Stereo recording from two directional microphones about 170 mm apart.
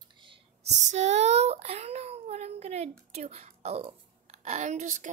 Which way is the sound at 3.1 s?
40° right (ahead or behind).